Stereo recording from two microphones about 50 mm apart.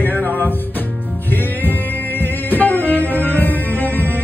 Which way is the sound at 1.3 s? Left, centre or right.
Left.